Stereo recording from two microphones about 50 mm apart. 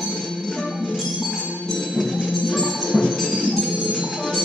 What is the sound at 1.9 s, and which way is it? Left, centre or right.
Music, centre.